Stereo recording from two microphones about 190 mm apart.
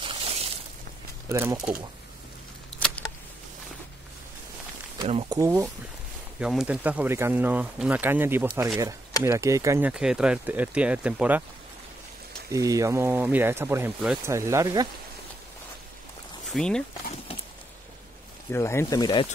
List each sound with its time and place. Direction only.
0.0 s a sound: 30° right (ahead or behind)
1.3 s speech: 10° right (ahead or behind)
5.0 s speech: 30° right (ahead or behind)
5.4 s speech: 15° right (ahead or behind)
6.4 s speech: 5° right (ahead or behind)
12.4 s speech: 15° right (ahead or behind)
16.5 s speech: 5° left (ahead or behind)
18.5 s speech: 15° left (ahead or behind)